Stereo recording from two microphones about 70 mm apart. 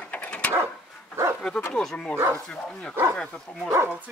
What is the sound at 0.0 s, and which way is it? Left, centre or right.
Dog, centre.